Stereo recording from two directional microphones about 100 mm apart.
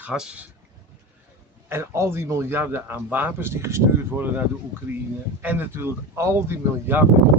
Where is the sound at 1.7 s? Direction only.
25° right (ahead or behind).